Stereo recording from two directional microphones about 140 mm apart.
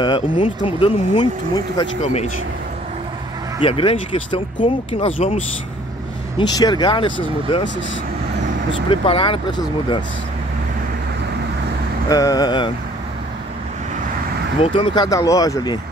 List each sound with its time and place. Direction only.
0.0 s speech: 35° left (ahead or behind)
3.6 s speech: 40° left (ahead or behind)
6.3 s speech: 30° left (ahead or behind)
8.9 s speech: 40° left (ahead or behind)
12.1 s speech: 25° left (ahead or behind)
14.6 s speech: 40° left (ahead or behind)
15.0 s speech: 25° left (ahead or behind)